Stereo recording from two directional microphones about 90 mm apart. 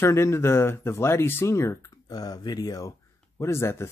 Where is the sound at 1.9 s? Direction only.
45° left (ahead or behind); by 3.9 s 30° left (ahead or behind).